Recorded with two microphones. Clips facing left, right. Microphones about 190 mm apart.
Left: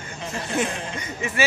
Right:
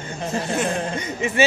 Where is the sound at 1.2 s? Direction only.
20° right (ahead or behind).